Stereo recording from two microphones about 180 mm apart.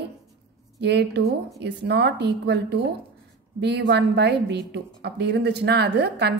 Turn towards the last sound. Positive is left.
turn(degrees=-65)  # may be behind; listen again after turning